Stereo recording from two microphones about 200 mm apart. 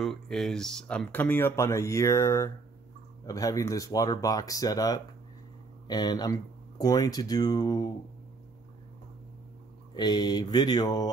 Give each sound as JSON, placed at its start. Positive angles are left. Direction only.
{"t": 0.0, "sound": "speech", "side_deg": 0}
{"t": 9.9, "sound": "speech", "side_deg": 20}